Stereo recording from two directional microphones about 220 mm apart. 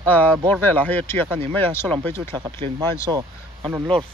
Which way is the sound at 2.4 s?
20° right (ahead or behind).